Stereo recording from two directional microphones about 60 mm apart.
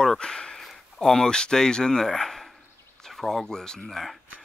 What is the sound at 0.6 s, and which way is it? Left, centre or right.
Speech, centre.